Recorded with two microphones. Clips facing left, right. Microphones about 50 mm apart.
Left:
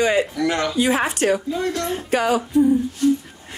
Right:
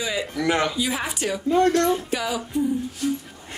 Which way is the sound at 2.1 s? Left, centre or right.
Left.